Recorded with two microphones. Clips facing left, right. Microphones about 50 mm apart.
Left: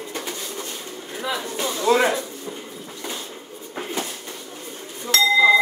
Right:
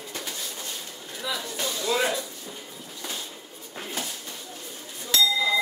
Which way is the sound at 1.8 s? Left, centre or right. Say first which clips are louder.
Left 8 dB; left.